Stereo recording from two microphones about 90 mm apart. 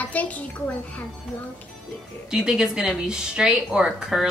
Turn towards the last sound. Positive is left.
turn(degrees=-5)  # may be behind; listen again after turning